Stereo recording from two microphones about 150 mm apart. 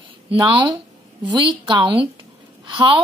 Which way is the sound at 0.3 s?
35° right (ahead or behind).